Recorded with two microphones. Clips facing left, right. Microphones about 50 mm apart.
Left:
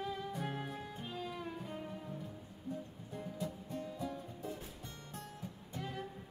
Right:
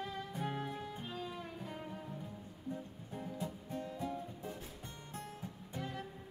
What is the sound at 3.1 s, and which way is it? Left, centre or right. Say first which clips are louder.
Music: even; right.